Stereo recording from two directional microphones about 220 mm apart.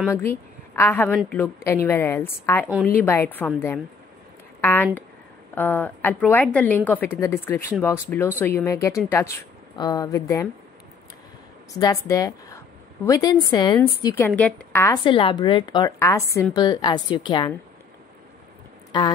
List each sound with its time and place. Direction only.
0.1 s a woman's voice: 10° left (ahead or behind)
12.1 s a woman's voice: 15° left (ahead or behind)
15.0 s a woman's voice: 25° left (ahead or behind)
18.9 s speech: 20° left (ahead or behind)